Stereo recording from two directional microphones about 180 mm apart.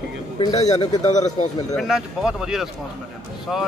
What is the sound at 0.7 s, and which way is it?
Speech, 40° left (ahead or behind).